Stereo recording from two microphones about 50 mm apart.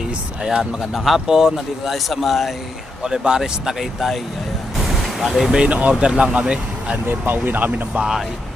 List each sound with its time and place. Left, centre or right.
0.4 s speech: centre
0.9 s speech: centre
3.0 s speech: centre
4.7 s vehicle: centre
5.6 s speech: right
7.4 s speech: right
7.7 s speech: right